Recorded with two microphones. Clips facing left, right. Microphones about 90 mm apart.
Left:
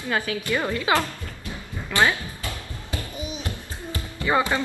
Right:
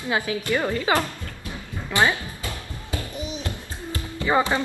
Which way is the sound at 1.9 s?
15° right (ahead or behind).